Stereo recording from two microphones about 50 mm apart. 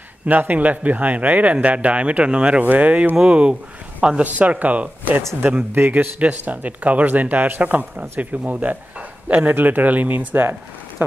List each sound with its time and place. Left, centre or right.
0.3 s speech: right
2.6 s speech: right
11.0 s a sound: right